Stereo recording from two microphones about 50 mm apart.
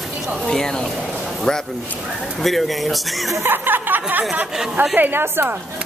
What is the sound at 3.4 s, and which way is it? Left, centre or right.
A woman's voice, right.